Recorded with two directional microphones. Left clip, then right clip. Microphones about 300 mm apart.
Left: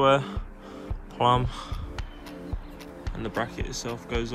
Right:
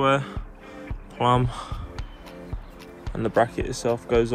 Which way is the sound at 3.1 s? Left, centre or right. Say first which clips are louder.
Right 9 dB; centre.